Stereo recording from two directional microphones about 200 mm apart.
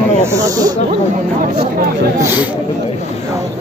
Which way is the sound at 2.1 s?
10° right (ahead or behind).